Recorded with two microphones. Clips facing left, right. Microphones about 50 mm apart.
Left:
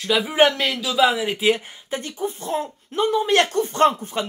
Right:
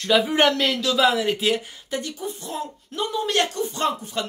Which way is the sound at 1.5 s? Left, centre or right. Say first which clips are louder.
Left 1 dB; left.